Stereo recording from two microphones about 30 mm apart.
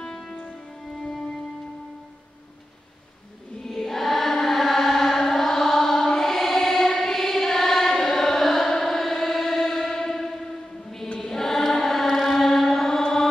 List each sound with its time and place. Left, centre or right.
0.1 s music: left
3.6 s chant: centre
8.0 s carnatic music: centre
8.8 s choir: centre
11.1 s chant: centre